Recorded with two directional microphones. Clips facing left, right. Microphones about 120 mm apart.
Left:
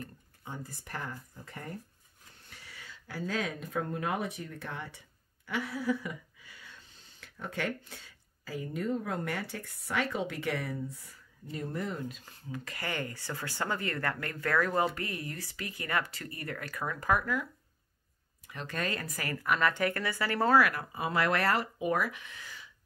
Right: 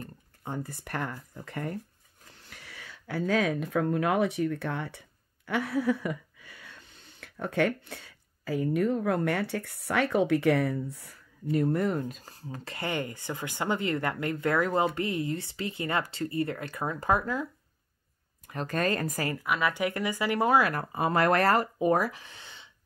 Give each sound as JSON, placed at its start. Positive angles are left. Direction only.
{"t": 0.5, "sound": "speech", "side_deg": -65}
{"t": 5.5, "sound": "a sound", "side_deg": -60}
{"t": 12.2, "sound": "speech", "side_deg": -35}
{"t": 18.5, "sound": "speech", "side_deg": -45}
{"t": 19.3, "sound": "speech", "side_deg": -10}
{"t": 20.7, "sound": "speech", "side_deg": -50}